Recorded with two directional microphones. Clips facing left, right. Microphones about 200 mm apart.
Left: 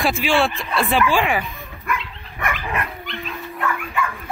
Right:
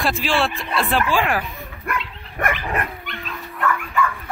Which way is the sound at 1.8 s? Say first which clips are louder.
Left 1 dB; 50° right (ahead or behind).